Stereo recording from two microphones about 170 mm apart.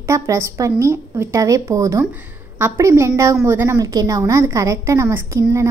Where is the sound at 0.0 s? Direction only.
15° right (ahead or behind).